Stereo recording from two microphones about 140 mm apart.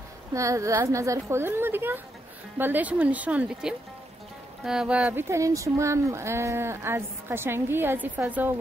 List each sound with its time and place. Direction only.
0.3 s a woman's voice: 20° right (ahead or behind)
5.3 s speech: 20° right (ahead or behind)